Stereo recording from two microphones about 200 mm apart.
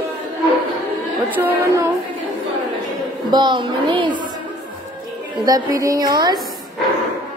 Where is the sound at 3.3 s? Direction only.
20° right (ahead or behind).